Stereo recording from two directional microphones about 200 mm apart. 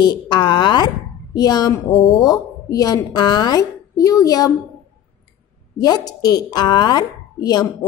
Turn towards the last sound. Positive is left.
turn(degrees=20)  # may be behind; listen again after turning